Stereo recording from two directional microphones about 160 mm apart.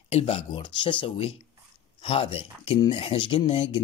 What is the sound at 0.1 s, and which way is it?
Speech, 35° left (ahead or behind).